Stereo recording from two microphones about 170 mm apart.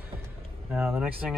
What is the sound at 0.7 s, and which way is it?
Speech, 10° right (ahead or behind).